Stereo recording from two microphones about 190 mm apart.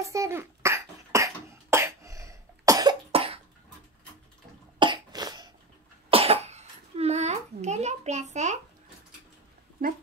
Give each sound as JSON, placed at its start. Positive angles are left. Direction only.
{"t": 0.0, "sound": "cough", "side_deg": -15}
{"t": 4.7, "sound": "cough", "side_deg": -25}